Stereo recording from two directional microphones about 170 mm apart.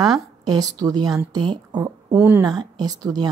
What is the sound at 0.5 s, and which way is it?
A woman's voice, 20° right (ahead or behind).